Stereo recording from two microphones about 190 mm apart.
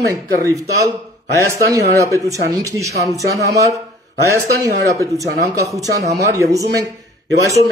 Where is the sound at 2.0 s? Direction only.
15° right (ahead or behind).